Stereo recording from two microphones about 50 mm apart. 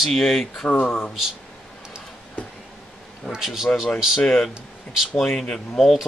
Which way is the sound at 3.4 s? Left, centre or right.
Centre.